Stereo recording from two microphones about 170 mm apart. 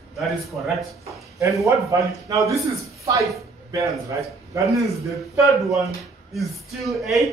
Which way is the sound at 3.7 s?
20° right (ahead or behind).